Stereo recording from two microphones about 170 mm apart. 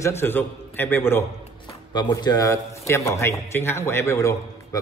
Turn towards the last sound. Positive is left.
turn(degrees=20)  # may be behind; listen again after turning